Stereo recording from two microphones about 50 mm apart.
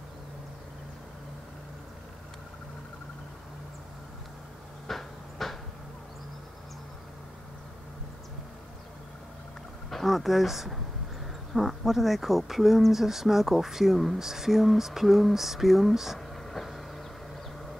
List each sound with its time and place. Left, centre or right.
4.8 s a sound: centre
9.8 s speech: centre
16.4 s vehicle: centre